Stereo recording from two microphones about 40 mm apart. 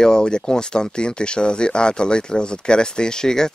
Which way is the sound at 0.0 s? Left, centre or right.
Centre.